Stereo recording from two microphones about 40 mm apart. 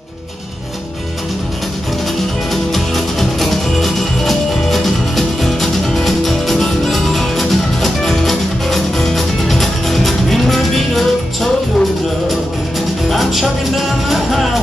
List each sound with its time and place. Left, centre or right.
2.5 s music: centre
13.1 s music: centre